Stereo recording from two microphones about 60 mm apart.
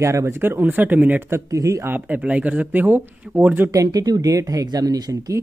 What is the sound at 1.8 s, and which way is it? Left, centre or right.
Speech, right.